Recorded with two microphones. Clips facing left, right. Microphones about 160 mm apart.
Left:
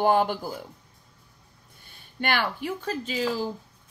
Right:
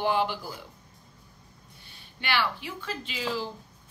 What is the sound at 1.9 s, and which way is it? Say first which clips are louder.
Speech: left 4 dB; 50° left (ahead or behind).